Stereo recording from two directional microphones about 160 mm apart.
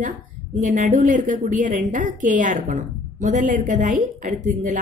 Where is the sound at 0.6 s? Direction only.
55° right (ahead or behind).